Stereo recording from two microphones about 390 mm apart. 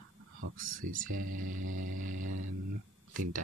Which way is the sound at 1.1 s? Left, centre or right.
Right.